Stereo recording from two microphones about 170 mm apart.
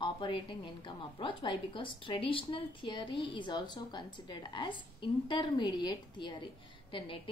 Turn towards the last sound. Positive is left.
turn(degrees=30)  # may be behind; listen again after turning